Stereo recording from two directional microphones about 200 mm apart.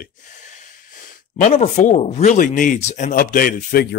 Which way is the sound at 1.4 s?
40° left (ahead or behind).